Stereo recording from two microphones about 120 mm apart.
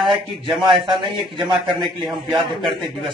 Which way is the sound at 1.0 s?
45° right (ahead or behind).